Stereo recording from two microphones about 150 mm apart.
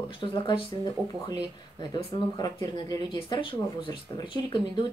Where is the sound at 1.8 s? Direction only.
25° left (ahead or behind).